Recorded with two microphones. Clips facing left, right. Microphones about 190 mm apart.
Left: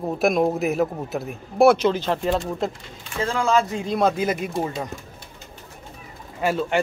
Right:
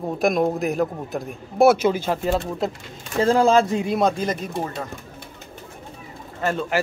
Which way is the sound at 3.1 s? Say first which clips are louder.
Right 5 dB; 35° right (ahead or behind).